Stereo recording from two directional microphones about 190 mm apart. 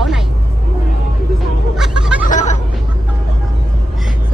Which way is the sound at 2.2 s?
40° left (ahead or behind).